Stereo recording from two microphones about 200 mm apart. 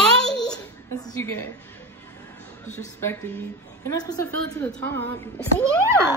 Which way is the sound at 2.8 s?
10° left (ahead or behind).